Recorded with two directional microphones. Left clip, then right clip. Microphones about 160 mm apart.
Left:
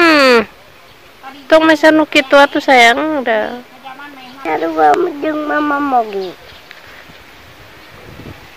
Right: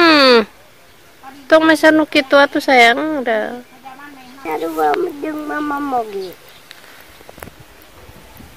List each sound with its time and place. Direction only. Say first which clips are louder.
0.0 s a sound: left 1 dB; 25° right (ahead or behind)
1.5 s speech: left 2 dB; 20° right (ahead or behind)
4.5 s speech: left 6 dB; 40° left (ahead or behind)